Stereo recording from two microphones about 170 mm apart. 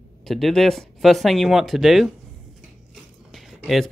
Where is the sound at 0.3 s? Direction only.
Centre (ahead or behind).